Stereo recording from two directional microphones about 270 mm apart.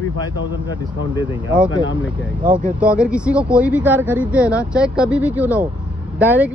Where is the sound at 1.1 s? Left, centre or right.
Centre.